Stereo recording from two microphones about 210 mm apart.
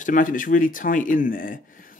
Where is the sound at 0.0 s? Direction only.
40° left (ahead or behind).